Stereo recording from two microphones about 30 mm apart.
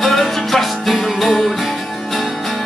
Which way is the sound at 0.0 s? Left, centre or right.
Centre.